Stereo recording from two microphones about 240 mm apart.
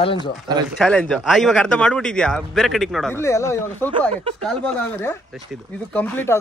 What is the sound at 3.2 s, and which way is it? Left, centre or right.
Speech, centre.